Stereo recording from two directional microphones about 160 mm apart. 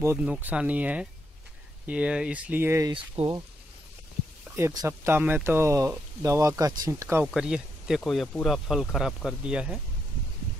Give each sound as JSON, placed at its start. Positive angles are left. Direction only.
{"t": 0.0, "sound": "speech", "side_deg": -10}
{"t": 2.9, "sound": "speech", "side_deg": -30}
{"t": 4.6, "sound": "speech", "side_deg": -15}
{"t": 7.2, "sound": "speech", "side_deg": -5}